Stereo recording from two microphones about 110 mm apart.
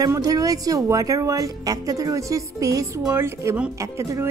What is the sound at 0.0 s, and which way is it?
A woman's voice, 35° right (ahead or behind).